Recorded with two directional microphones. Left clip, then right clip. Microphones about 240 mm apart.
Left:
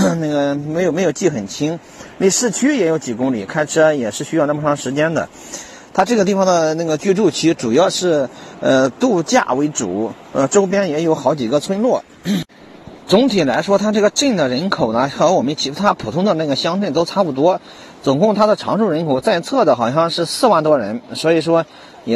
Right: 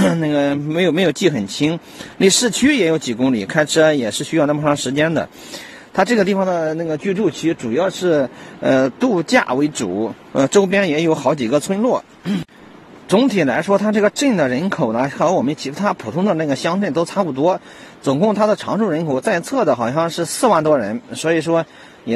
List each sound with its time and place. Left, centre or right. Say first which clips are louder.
0.5 s speech: even; centre
5.9 s speech: left 1 dB; centre
6.4 s speech: left 4 dB; centre
8.1 s speech: even; centre
9.5 s speech: left 1 dB; centre
13.1 s speech: left 2 dB; centre